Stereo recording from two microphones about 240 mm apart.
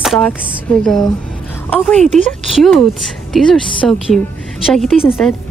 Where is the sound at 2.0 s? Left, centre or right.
Right.